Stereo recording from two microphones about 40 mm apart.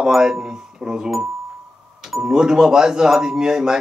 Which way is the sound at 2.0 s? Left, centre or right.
Centre.